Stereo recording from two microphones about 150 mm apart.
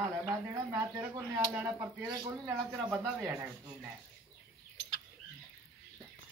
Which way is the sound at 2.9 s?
5° right (ahead or behind).